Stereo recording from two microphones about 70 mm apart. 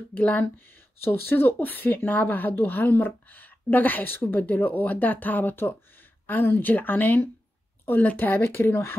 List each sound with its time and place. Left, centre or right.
0.1 s a woman's voice: left